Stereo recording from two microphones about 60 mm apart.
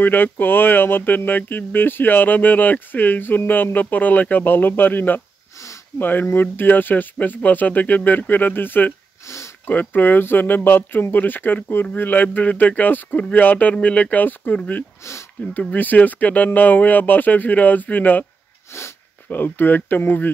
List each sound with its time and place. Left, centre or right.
0.0 s speech: left
18.7 s speech: left
19.2 s speech: left